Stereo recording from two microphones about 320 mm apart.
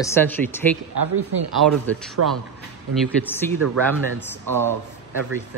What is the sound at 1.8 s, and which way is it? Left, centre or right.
Speech, right.